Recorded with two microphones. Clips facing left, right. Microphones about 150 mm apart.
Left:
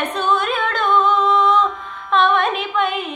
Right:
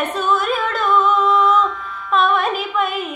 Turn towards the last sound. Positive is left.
turn(degrees=-5)  # may be behind; listen again after turning